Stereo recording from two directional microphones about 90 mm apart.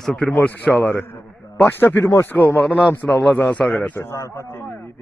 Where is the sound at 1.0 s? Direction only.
35° left (ahead or behind).